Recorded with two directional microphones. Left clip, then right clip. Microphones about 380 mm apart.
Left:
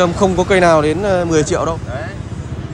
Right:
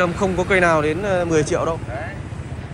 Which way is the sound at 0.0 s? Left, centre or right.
Centre.